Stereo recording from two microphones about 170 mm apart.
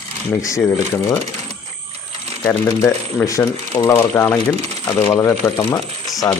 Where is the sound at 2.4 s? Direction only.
15° left (ahead or behind).